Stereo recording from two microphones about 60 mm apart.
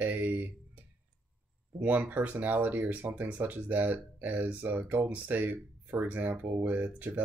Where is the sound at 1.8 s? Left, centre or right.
Right.